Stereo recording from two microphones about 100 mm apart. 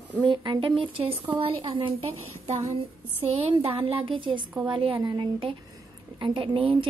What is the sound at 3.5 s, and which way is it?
A woman's voice, 65° right (ahead or behind).